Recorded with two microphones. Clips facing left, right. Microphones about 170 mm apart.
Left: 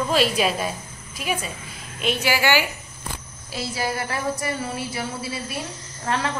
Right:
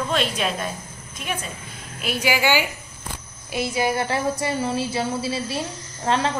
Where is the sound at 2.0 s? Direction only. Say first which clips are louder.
Even; 10° right (ahead or behind).